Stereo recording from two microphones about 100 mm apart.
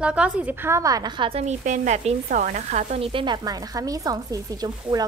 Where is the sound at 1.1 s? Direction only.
60° right (ahead or behind).